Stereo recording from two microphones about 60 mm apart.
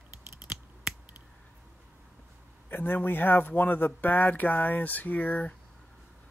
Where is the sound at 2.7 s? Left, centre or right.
Left.